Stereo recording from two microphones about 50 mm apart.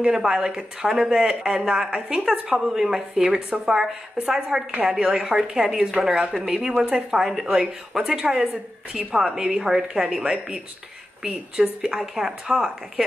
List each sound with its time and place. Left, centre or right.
0.0 s a woman's voice: centre
1.9 s a woman's voice: right
5.3 s a woman's voice: centre